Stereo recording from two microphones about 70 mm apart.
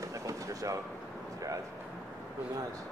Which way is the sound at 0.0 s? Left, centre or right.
Right.